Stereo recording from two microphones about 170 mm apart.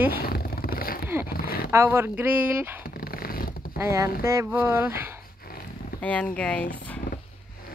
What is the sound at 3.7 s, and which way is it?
Speech, 15° right (ahead or behind).